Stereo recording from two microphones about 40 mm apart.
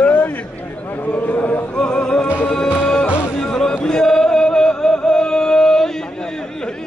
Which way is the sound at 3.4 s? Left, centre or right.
Centre.